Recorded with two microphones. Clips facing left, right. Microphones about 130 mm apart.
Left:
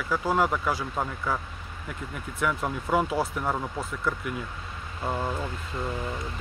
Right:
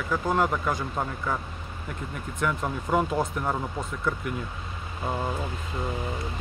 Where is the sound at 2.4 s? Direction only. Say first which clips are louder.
Even; 5° left (ahead or behind).